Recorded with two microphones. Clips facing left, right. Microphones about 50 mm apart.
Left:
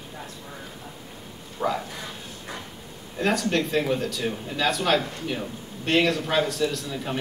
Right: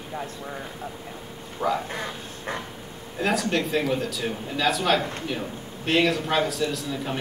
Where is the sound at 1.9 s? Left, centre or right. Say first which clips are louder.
Right 4 dB; right.